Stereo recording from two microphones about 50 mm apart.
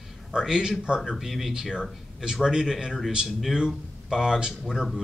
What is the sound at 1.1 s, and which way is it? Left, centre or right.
Speech, centre.